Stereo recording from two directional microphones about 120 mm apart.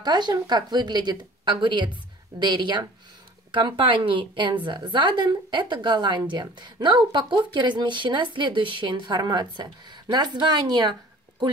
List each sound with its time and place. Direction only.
0.0 s a woman's voice: 35° right (ahead or behind)